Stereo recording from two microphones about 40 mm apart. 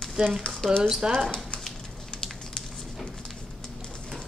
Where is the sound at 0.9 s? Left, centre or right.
Centre.